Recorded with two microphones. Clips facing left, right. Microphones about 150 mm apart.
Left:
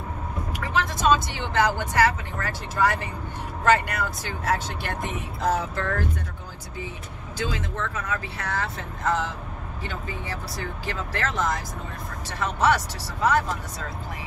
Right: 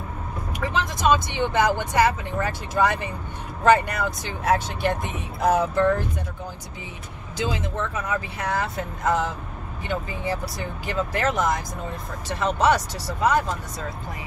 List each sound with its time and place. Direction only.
0.7 s speech: 15° right (ahead or behind)
7.3 s speech: 15° right (ahead or behind)